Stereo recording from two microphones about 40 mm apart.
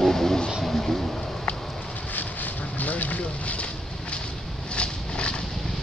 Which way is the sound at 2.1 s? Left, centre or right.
Left.